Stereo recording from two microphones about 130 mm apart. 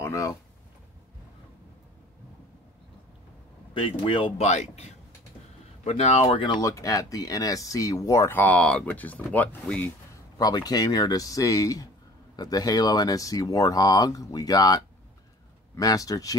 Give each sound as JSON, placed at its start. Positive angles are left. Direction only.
{"t": 0.0, "sound": "a sound", "side_deg": 25}
{"t": 3.7, "sound": "speech", "side_deg": 40}
{"t": 4.5, "sound": "speech", "side_deg": 60}
{"t": 6.4, "sound": "speech", "side_deg": 35}
{"t": 10.3, "sound": "speech", "side_deg": 30}